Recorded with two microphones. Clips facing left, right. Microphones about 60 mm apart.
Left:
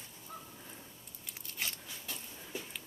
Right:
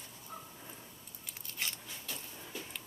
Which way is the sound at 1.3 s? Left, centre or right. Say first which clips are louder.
Even; centre.